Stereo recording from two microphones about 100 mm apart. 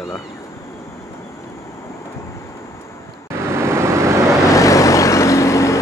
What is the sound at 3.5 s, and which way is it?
Vehicle, 25° right (ahead or behind).